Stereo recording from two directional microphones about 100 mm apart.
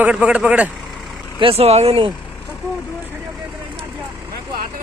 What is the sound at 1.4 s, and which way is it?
Speech, 75° right (ahead or behind).